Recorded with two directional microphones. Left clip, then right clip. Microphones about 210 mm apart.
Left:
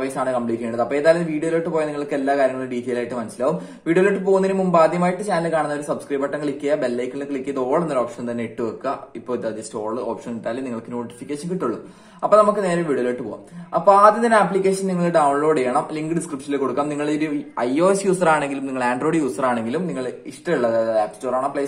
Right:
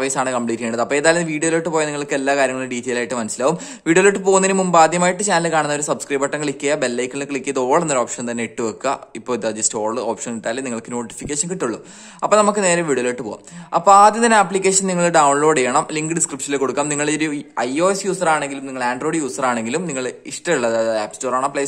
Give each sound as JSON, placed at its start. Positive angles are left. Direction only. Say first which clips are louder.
{"t": 0.0, "sound": "speech", "louder": "right 2 dB", "side_deg": -40}
{"t": 17.6, "sound": "a man's voice", "louder": "left 1 dB", "side_deg": -20}